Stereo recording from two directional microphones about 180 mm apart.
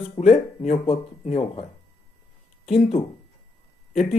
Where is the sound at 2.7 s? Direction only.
35° left (ahead or behind).